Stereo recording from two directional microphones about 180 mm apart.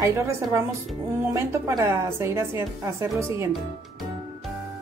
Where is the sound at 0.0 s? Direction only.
15° right (ahead or behind).